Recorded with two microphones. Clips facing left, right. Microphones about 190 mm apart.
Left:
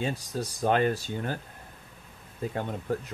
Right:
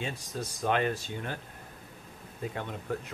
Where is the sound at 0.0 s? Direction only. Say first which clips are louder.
Left 5 dB; 35° left (ahead or behind).